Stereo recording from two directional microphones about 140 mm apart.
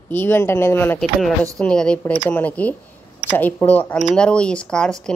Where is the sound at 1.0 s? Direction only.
Centre (ahead or behind).